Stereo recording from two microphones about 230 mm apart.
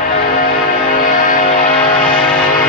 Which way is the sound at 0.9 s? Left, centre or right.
Left.